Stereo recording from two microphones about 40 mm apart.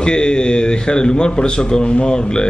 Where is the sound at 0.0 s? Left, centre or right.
Centre.